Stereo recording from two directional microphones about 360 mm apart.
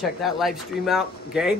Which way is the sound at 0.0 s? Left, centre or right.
Centre.